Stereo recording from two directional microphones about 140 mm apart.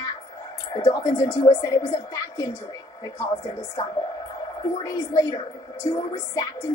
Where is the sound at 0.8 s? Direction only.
25° left (ahead or behind).